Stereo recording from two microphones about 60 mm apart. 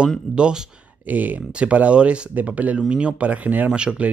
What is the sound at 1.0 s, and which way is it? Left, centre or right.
Speech, right.